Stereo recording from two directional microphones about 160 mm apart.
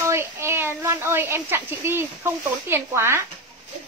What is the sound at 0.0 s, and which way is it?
A woman's voice, 15° right (ahead or behind).